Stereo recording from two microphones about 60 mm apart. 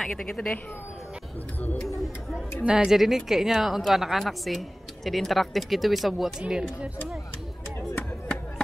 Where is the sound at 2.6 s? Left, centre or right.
Centre.